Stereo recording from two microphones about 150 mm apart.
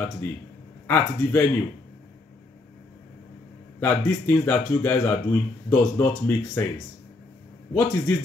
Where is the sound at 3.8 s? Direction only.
15° left (ahead or behind).